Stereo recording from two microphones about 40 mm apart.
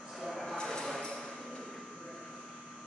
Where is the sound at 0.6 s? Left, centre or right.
Centre.